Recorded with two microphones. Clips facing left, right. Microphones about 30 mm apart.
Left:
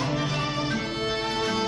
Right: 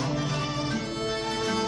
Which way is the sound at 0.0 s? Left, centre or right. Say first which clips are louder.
Left 2 dB; left.